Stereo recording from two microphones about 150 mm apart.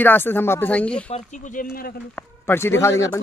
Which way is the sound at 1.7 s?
75° left (ahead or behind).